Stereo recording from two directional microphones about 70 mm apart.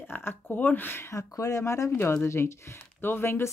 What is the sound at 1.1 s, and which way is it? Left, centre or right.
Speech, left.